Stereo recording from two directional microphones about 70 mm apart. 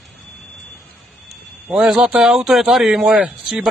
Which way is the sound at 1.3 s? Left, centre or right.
Centre.